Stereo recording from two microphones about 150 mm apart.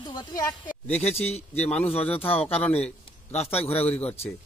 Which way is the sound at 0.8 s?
45° left (ahead or behind).